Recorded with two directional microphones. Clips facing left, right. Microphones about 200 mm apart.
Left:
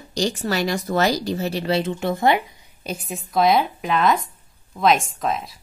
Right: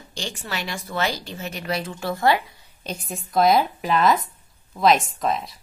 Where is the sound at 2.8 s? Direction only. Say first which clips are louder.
Left 2 dB; 5° left (ahead or behind).